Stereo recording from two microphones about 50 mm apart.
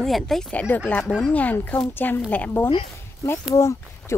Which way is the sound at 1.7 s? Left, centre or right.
Left.